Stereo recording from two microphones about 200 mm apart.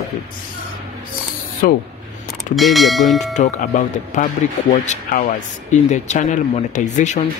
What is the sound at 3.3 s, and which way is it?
Speech, 40° left (ahead or behind).